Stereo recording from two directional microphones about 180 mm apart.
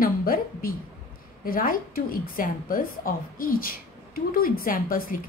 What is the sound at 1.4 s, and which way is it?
A woman's voice, 50° left (ahead or behind).